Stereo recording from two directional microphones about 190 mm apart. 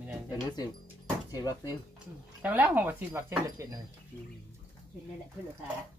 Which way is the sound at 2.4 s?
10° right (ahead or behind).